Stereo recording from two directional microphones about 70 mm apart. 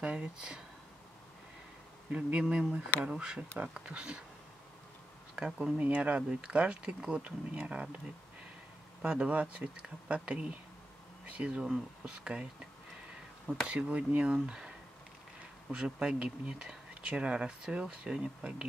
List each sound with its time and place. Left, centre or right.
0.0 s speech: centre
2.0 s speech: centre
5.3 s speech: centre
9.0 s speech: centre
13.7 s speech: centre
15.7 s speech: centre